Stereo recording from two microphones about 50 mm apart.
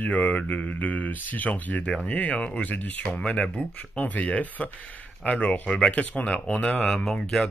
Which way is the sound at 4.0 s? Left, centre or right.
Left.